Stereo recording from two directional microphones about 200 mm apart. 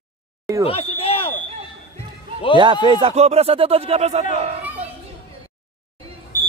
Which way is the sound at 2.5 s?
25° right (ahead or behind).